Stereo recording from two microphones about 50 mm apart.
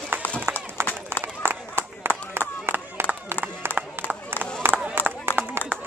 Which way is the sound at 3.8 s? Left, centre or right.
Right.